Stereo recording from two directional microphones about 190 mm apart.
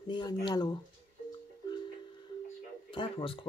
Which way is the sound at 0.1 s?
20° left (ahead or behind).